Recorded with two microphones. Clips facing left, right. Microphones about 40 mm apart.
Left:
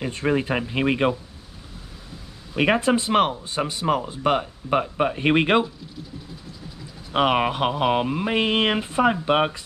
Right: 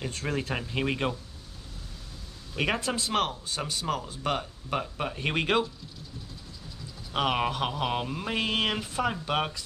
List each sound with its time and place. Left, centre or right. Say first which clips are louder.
0.0 s speech: left 9 dB; left
2.5 s speech: left 9 dB; left
7.1 s speech: left 7 dB; left